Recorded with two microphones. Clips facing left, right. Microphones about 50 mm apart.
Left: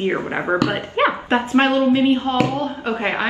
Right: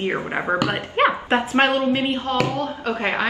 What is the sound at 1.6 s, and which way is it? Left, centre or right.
Speech, right.